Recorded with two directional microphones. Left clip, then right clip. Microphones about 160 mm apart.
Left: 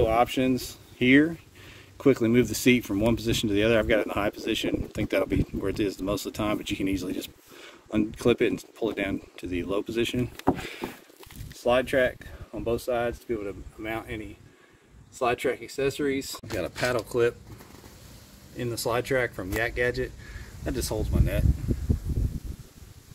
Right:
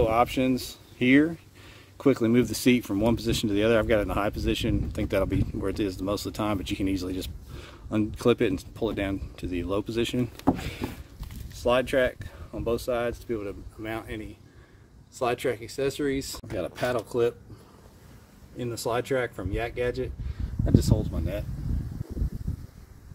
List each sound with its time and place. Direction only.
0.0 s speech: centre (ahead or behind); by 10.9 s 20° right (ahead or behind)
11.5 s speech: 5° right (ahead or behind)
18.6 s speech: 5° right (ahead or behind)